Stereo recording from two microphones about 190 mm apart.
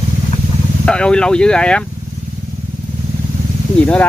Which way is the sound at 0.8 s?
5° left (ahead or behind).